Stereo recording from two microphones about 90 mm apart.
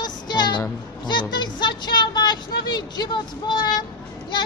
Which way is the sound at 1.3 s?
55° left (ahead or behind).